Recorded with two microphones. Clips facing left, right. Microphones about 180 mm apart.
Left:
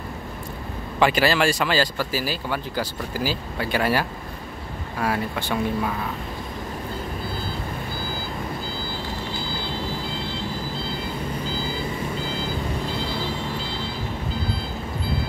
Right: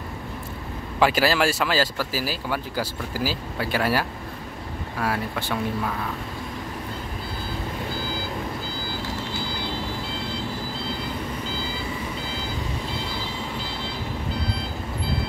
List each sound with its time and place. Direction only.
0.9 s speech: 5° right (ahead or behind)
5.0 s speech: centre (ahead or behind)